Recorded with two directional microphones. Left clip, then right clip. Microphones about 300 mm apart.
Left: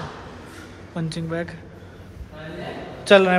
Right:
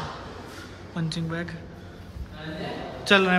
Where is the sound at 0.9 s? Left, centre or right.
Centre.